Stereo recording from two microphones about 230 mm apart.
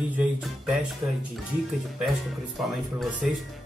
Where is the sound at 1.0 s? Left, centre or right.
Centre.